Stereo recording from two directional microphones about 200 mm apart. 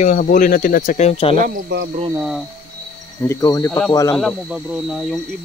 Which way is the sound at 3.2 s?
15° left (ahead or behind).